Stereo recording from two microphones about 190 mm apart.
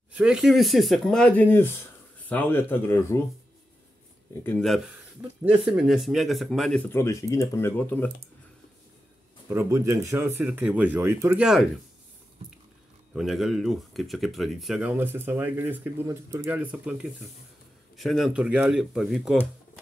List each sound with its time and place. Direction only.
0.1 s speech: 5° right (ahead or behind); by 3.2 s 10° left (ahead or behind)
4.4 s speech: 5° left (ahead or behind)
9.5 s speech: 15° right (ahead or behind)
11.4 s speech: centre (ahead or behind)
13.1 s speech: centre (ahead or behind)